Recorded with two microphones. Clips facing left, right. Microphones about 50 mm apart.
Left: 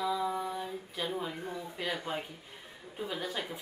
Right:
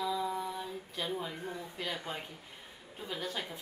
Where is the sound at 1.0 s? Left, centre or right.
Centre.